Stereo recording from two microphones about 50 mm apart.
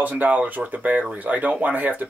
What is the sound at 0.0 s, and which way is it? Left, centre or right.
Speech, right.